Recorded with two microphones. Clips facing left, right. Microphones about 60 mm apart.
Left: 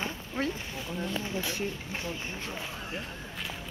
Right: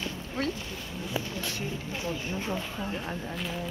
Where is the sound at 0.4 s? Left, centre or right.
Centre.